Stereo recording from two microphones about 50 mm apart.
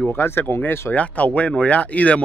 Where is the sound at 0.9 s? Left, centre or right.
Left.